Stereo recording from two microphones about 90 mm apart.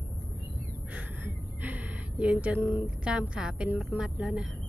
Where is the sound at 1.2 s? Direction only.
20° right (ahead or behind).